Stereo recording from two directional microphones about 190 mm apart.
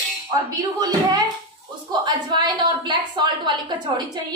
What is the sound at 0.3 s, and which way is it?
A woman's voice, 20° right (ahead or behind).